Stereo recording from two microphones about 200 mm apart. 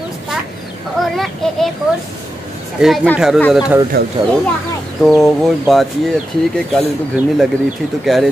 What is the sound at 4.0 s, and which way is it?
Speech, 55° right (ahead or behind).